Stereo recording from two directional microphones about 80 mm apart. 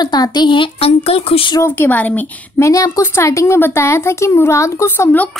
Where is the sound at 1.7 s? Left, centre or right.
Left.